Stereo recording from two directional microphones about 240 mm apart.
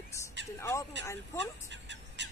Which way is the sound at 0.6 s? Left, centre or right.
Centre.